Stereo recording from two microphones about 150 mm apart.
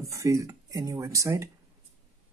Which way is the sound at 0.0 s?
20° right (ahead or behind).